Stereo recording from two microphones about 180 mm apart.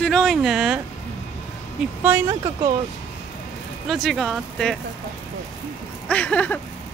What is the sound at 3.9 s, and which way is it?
Speech, centre (ahead or behind).